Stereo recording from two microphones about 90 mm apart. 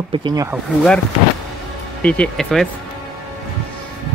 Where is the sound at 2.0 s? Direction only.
15° left (ahead or behind).